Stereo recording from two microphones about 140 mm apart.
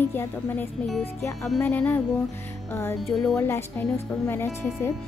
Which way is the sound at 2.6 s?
15° left (ahead or behind).